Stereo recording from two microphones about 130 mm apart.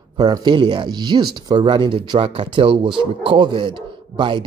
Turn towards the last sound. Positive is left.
turn(degrees=-40)  # may be behind; listen again after turning